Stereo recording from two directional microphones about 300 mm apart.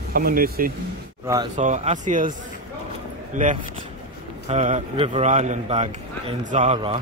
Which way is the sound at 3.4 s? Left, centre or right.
Right.